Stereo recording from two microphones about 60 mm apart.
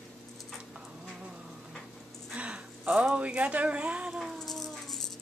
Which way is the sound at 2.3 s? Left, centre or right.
Right.